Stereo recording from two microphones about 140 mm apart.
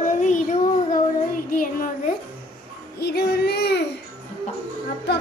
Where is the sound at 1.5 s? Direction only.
75° left (ahead or behind).